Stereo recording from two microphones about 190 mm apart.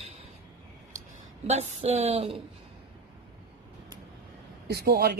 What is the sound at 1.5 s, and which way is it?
Speech, 35° right (ahead or behind).